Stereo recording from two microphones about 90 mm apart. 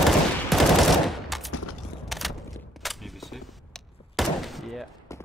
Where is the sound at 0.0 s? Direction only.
Centre (ahead or behind).